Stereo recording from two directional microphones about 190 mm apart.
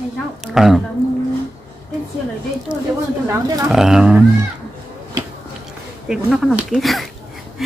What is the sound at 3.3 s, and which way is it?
Speech, 20° right (ahead or behind).